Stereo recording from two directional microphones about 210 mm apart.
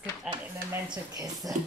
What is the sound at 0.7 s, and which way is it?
Speech, 15° right (ahead or behind).